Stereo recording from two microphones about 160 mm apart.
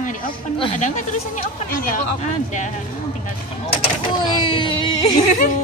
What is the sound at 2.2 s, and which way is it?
Speech, 50° left (ahead or behind).